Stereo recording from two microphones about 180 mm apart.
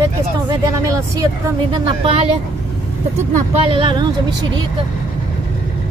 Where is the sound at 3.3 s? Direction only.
35° right (ahead or behind).